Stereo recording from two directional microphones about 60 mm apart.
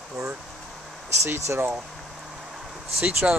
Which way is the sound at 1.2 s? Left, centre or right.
Right.